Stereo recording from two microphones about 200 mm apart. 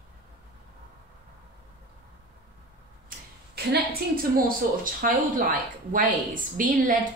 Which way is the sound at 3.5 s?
50° right (ahead or behind).